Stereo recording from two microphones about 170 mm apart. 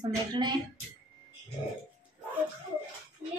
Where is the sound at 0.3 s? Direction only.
25° right (ahead or behind).